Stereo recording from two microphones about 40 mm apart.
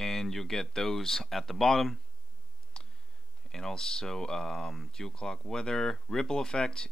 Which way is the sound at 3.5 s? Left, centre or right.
Centre.